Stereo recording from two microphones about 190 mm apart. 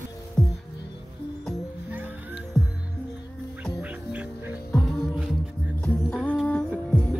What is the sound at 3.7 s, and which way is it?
Music, 5° right (ahead or behind).